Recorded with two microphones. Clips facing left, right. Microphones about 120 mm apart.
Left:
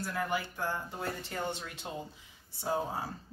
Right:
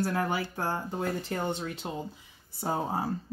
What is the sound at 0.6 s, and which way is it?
Speech, 40° right (ahead or behind).